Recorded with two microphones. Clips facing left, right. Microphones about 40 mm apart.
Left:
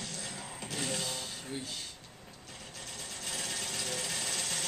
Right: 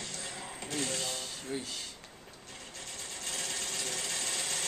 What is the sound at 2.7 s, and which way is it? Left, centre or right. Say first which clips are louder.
Sewing machine: even; centre.